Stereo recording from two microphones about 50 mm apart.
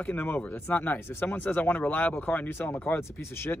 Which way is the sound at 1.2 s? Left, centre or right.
Left.